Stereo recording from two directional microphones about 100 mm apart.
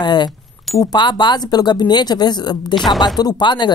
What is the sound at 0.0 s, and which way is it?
A woman's voice, 50° left (ahead or behind).